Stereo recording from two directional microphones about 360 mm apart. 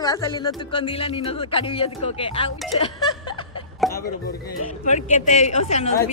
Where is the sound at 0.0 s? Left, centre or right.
Centre.